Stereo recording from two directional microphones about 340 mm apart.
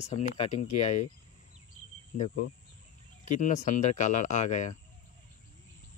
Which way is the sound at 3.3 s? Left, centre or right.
Left.